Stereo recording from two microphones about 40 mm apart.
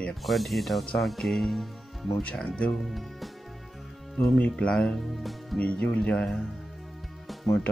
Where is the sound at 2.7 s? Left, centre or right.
Centre.